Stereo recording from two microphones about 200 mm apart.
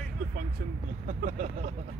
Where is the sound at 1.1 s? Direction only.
40° right (ahead or behind).